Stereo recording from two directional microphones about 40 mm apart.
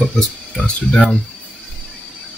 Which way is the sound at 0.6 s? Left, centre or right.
Left.